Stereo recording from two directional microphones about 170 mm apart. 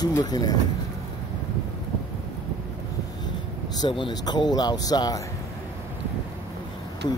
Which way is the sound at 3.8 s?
25° left (ahead or behind).